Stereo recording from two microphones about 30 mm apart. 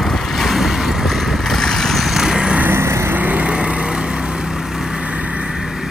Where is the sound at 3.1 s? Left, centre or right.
Right.